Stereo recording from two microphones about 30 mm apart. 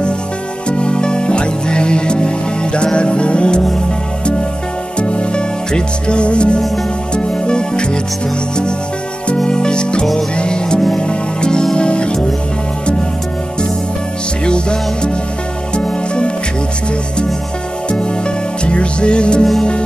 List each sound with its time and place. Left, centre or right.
0.7 s music: left
4.9 s music: left
9.5 s music: left
14.4 s music: left
18.7 s music: left